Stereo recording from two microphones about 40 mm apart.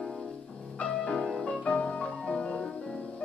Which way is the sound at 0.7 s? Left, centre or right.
Left.